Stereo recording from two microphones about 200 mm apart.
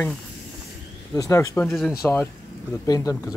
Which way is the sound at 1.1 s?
15° left (ahead or behind).